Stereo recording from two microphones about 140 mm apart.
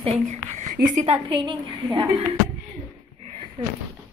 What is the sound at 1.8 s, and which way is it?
Speech, 25° right (ahead or behind).